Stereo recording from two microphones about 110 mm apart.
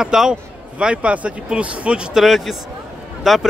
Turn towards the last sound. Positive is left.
turn(degrees=0)  # may be behind; listen again after turning